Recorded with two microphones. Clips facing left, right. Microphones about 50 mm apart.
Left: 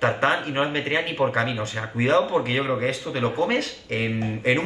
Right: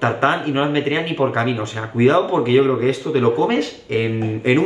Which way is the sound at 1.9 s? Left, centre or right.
Centre.